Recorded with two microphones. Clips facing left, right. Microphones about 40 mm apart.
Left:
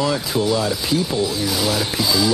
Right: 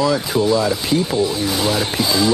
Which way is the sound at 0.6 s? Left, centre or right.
Centre.